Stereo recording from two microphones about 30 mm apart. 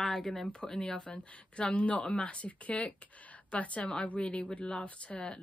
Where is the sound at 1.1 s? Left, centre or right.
Left.